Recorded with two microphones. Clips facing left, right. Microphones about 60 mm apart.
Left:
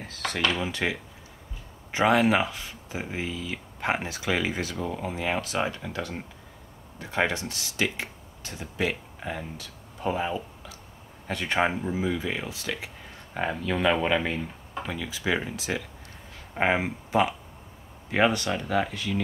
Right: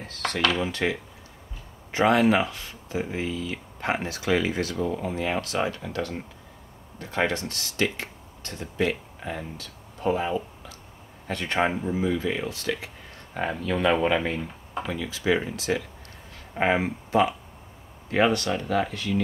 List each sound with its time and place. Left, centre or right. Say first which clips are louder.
0.0 s a sound: right 2 dB; centre
0.7 s speech: right 2 dB; centre
4.7 s speech: right 4 dB; centre
5.0 s speech: right 1 dB; centre
5.8 s speech: right 3 dB; centre
7.0 s speech: right 1 dB; centre
15.0 s speech: right 4 dB; centre